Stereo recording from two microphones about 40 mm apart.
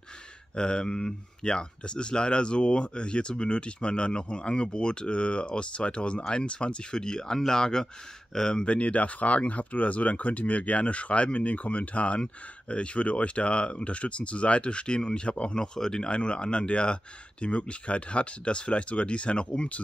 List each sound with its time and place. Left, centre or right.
0.6 s speech: left
15.6 s speech: centre